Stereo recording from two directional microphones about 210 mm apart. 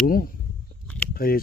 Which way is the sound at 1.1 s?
45° left (ahead or behind).